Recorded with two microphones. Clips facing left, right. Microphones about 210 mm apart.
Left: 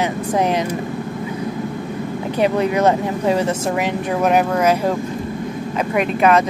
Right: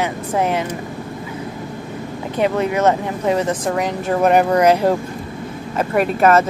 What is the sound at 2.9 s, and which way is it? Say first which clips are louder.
Speech: left 1 dB; 30° left (ahead or behind).